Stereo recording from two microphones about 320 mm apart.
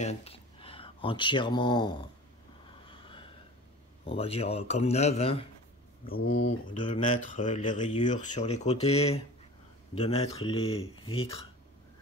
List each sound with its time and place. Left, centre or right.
0.0 s speech: centre
2.9 s snort: centre
4.0 s speech: centre